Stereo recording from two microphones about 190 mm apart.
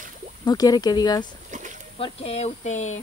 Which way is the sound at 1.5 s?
40° right (ahead or behind).